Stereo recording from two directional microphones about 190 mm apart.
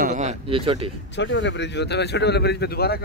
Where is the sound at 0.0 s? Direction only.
40° right (ahead or behind).